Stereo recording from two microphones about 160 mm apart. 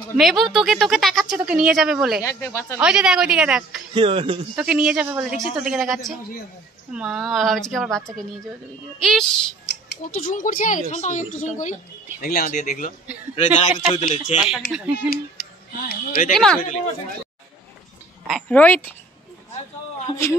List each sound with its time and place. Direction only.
0.2 s a woman's voice: centre (ahead or behind)
2.2 s speech: 15° left (ahead or behind)
2.8 s a woman's voice: 5° right (ahead or behind)
3.9 s speech: 35° right (ahead or behind)
4.6 s a woman's voice: 5° right (ahead or behind)
10.0 s a woman's voice: 55° left (ahead or behind)
14.4 s a woman's voice: 5° right (ahead or behind)
15.8 s speech: 70° left (ahead or behind)
16.3 s a woman's voice: 5° left (ahead or behind)
18.5 s speech: 10° left (ahead or behind)